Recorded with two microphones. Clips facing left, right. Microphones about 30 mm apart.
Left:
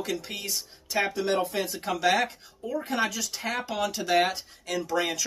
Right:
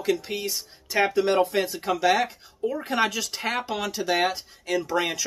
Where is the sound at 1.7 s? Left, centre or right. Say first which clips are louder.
Right 3 dB; centre.